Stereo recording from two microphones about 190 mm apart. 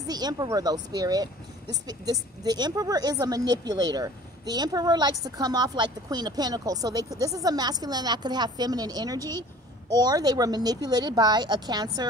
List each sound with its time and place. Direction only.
0.0 s speech: 20° right (ahead or behind)